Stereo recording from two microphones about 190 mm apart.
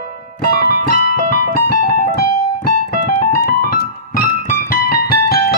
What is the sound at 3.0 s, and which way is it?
Keyboard, 45° left (ahead or behind).